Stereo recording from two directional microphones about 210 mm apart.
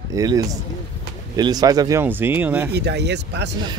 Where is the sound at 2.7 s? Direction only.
50° right (ahead or behind).